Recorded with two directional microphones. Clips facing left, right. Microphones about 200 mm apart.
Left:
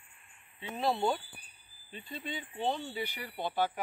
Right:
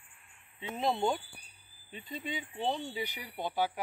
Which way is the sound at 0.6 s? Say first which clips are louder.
Even; 20° right (ahead or behind).